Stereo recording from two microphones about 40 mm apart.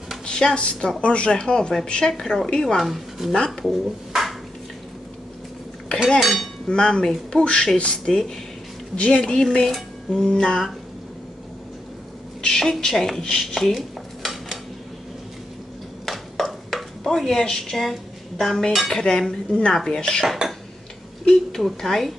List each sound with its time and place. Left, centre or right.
0.2 s speech: centre
1.9 s dishes: centre
2.8 s speech: centre
6.1 s cutlery: centre
6.7 s speech: centre
8.0 s dishes: centre
8.9 s speech: left
9.3 s dishes: centre
12.4 s dishes: centre
16.1 s a sound: centre
17.5 s dishes: centre
21.3 s dishes: centre
21.6 s speech: centre